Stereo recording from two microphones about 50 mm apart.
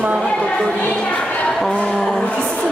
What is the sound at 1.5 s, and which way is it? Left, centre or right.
Music, centre.